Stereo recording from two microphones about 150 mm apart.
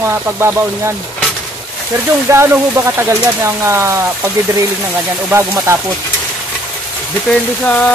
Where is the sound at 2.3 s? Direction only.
15° right (ahead or behind).